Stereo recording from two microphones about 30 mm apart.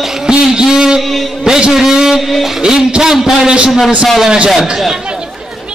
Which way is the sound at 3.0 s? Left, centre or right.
Centre.